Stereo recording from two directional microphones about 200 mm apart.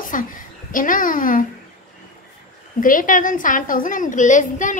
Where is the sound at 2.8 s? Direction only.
40° left (ahead or behind).